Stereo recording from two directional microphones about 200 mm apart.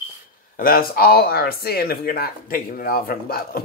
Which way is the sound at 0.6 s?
45° left (ahead or behind).